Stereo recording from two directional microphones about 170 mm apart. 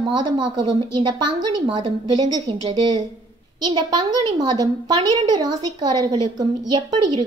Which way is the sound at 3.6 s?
25° right (ahead or behind).